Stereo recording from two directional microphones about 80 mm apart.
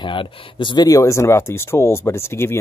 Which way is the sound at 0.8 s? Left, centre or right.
Left.